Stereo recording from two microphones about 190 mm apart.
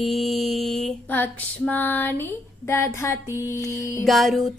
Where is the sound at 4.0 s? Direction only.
Centre (ahead or behind).